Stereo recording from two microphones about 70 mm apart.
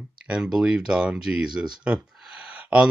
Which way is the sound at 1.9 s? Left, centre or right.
Centre.